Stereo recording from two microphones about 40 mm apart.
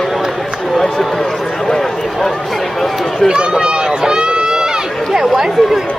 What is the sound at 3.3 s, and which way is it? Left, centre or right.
Run, right.